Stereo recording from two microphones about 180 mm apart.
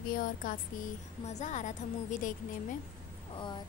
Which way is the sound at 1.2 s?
40° left (ahead or behind).